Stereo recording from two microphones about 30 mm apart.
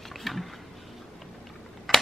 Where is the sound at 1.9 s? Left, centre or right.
Centre.